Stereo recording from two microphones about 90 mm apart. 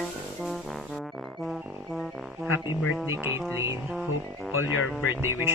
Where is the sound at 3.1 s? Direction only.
30° right (ahead or behind).